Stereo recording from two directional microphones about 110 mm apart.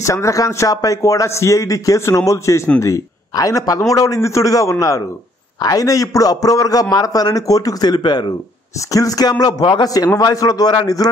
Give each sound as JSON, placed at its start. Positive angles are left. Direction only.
{"t": 0.0, "sound": "a man's voice", "side_deg": 25}